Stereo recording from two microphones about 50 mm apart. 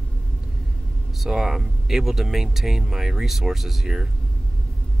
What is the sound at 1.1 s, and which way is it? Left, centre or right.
Speech, centre.